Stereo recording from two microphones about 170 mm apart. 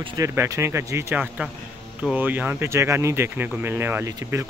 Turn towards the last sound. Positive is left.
turn(degrees=-15)  # may be behind; listen again after turning